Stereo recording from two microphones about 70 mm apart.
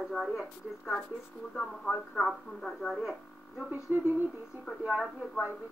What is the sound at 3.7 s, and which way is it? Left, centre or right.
Speech, right.